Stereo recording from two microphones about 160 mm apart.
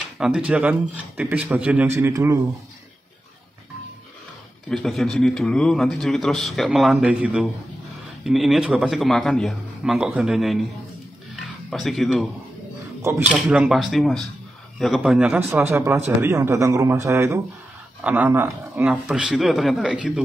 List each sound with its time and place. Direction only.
0.2 s speech: 5° right (ahead or behind)
4.6 s a man's voice: centre (ahead or behind)
11.7 s a man's voice: centre (ahead or behind)